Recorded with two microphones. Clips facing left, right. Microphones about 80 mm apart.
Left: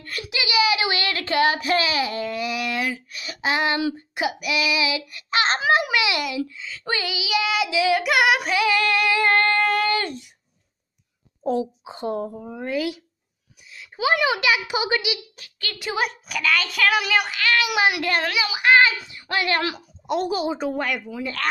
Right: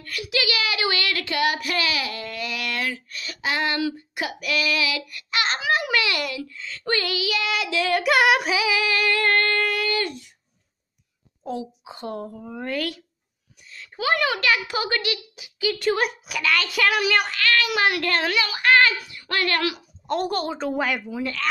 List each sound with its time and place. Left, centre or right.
0.0 s a sound: left
0.3 s a sound: centre
5.9 s speech: centre
6.8 s child singing: centre
9.2 s music: centre
9.7 s a sound: left
11.8 s a woman's voice: left
15.3 s a sound: centre
15.8 s a woman's voice: centre
16.1 s a child's voice: centre
17.4 s a woman's voice: centre
20.1 s a woman's voice: centre
20.7 s a child's voice: centre
21.4 s speech: left